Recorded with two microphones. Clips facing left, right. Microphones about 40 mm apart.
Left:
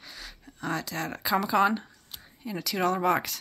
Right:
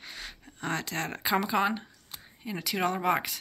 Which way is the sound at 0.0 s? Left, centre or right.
Right.